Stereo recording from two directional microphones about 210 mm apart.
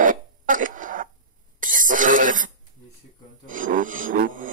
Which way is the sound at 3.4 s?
40° right (ahead or behind).